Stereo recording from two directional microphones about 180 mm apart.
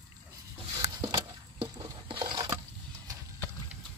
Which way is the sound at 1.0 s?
20° right (ahead or behind).